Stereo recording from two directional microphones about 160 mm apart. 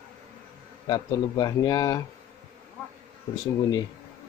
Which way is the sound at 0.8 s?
25° left (ahead or behind).